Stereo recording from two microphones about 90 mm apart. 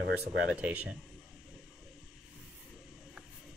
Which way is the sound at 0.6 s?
15° right (ahead or behind).